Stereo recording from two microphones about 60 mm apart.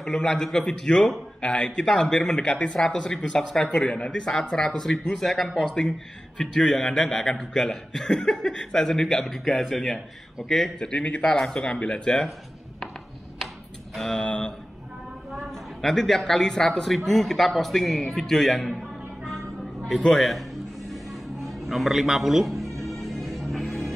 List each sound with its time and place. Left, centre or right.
0.0 s a man's voice: centre
10.9 s speech: centre
13.9 s speech: centre
15.8 s a man's voice: centre
20.0 s music: centre